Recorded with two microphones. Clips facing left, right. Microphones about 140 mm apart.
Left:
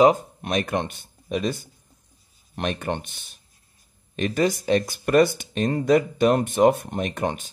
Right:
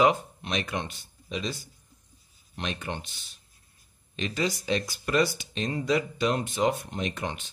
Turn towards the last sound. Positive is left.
turn(degrees=45)  # may be behind; listen again after turning